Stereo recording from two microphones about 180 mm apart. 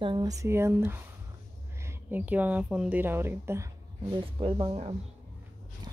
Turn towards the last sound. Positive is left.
turn(degrees=-35)  # may be behind; listen again after turning